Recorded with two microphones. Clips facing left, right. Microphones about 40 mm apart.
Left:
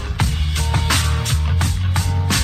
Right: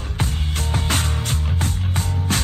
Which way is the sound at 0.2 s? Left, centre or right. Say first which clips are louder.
Left 2 dB; left.